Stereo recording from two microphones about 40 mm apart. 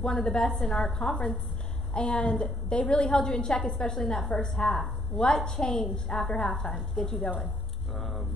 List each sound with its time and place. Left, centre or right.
0.0 s a woman's voice: centre